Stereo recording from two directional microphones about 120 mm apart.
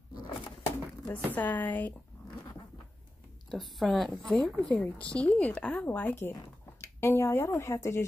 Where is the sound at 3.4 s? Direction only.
Centre (ahead or behind); by 8.0 s 25° left (ahead or behind).